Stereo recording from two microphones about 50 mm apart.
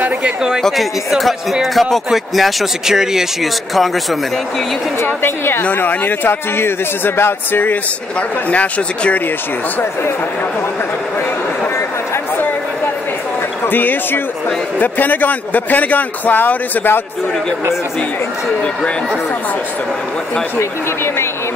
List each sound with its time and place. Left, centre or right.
0.6 s speech: centre
3.7 s speech: centre
5.0 s a woman's voice: left
8.5 s speech: left
13.7 s a man's voice: left
20.5 s speech: left